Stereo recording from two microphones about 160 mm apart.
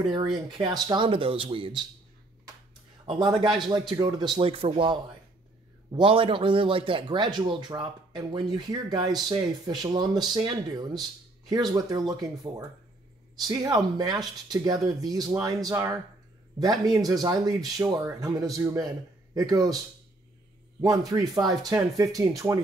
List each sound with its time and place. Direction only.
0.6 s speech: 30° right (ahead or behind)
3.1 s speech: 30° right (ahead or behind)
20.8 s speech: 25° right (ahead or behind)